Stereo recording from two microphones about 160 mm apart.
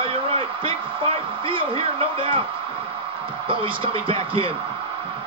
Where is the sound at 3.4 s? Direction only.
35° right (ahead or behind).